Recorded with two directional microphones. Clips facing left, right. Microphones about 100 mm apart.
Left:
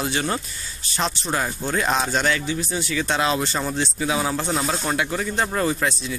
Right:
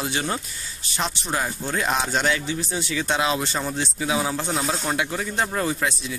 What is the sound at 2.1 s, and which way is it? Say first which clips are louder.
Speech: left 1 dB; 15° right (ahead or behind).